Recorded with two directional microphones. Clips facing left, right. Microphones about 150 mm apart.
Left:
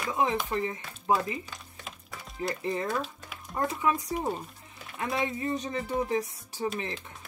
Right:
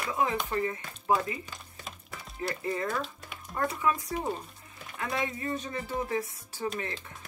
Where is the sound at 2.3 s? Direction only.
25° left (ahead or behind).